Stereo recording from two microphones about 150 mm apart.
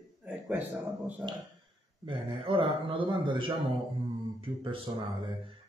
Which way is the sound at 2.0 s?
35° right (ahead or behind).